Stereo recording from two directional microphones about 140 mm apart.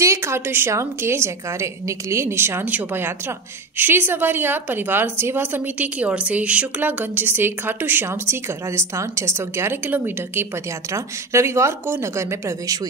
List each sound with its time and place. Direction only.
0.0 s a woman's voice: 20° right (ahead or behind)